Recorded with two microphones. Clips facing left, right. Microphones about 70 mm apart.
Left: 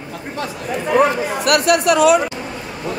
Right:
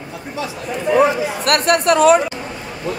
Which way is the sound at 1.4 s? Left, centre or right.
Right.